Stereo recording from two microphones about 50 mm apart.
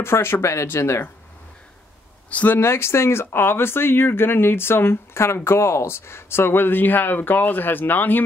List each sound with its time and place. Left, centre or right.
0.0 s speech: left
0.4 s speech: left
2.3 s speech: left
2.6 s speech: left